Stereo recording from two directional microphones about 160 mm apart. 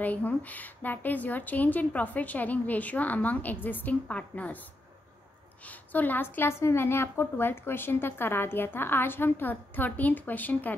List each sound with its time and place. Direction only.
0.0 s a woman's voice: 10° left (ahead or behind)
5.7 s a woman's voice: 10° left (ahead or behind)